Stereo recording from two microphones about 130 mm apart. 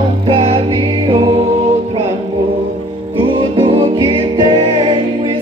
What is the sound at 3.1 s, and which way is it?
Music, 45° right (ahead or behind).